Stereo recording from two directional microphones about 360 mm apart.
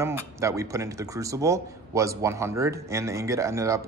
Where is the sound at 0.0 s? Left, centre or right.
Centre.